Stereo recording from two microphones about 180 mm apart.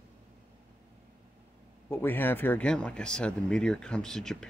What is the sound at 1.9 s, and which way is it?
Speech, 10° left (ahead or behind).